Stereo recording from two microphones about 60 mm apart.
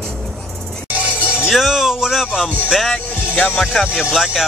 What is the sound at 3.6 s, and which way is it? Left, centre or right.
Speech, centre.